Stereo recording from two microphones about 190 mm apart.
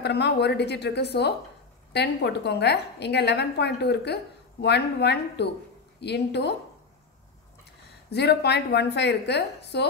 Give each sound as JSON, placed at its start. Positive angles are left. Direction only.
{"t": 0.0, "sound": "a woman's voice", "side_deg": 60}
{"t": 8.1, "sound": "a woman's voice", "side_deg": 60}